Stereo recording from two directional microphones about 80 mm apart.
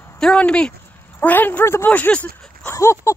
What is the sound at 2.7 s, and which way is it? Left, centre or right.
Dog, left.